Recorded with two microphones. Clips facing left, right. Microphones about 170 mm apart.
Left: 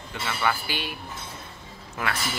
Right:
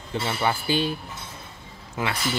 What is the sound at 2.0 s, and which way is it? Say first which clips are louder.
Speech: right 2 dB; 25° right (ahead or behind).